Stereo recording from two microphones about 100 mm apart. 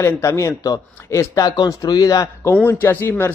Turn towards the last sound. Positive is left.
turn(degrees=20)  # may be behind; listen again after turning